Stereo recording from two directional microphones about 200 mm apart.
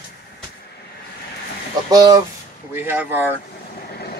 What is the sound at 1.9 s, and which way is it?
Speech, 20° right (ahead or behind).